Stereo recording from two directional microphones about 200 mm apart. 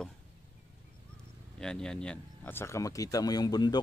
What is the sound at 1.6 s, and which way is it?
A man's voice, 5° left (ahead or behind).